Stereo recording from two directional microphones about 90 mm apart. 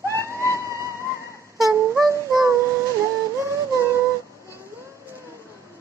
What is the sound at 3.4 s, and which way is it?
Music, 35° right (ahead or behind).